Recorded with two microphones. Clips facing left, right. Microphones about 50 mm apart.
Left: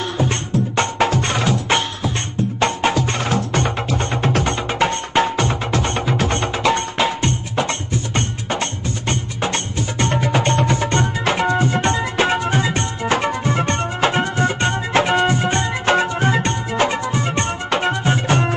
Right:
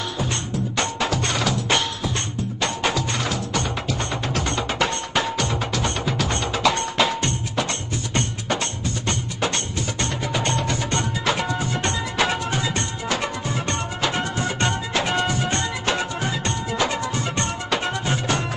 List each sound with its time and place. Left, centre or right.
0.2 s music: left
4.6 s music: left